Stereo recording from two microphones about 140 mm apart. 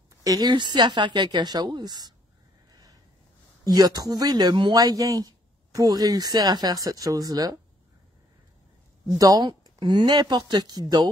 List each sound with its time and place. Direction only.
0.2 s speech: 25° right (ahead or behind)
3.6 s speech: 30° right (ahead or behind)
9.2 s speech: 25° right (ahead or behind)